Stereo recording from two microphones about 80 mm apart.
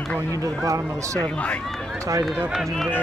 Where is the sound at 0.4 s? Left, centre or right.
Right.